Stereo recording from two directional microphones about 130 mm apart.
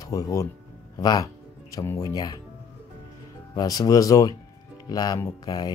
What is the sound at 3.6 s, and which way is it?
Speech, 30° left (ahead or behind).